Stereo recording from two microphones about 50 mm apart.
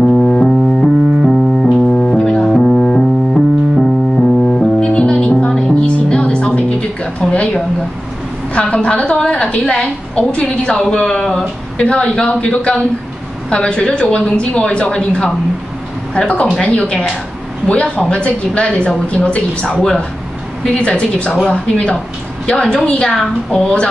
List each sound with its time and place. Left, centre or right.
0.2 s music: centre
0.5 s piano: centre
1.5 s keyboard: centre
2.0 s music: left
2.2 s music: centre
3.0 s piano: centre
4.4 s music: centre
7.2 s speech: centre